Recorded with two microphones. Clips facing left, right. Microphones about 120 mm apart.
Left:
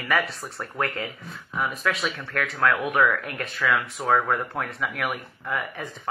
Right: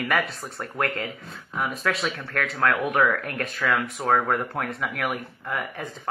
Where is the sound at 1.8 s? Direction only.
40° right (ahead or behind).